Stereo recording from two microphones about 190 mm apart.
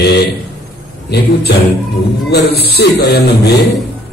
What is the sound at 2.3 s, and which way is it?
A man's voice, 60° left (ahead or behind).